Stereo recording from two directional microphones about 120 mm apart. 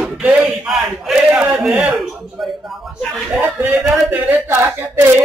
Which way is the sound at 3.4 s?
15° right (ahead or behind).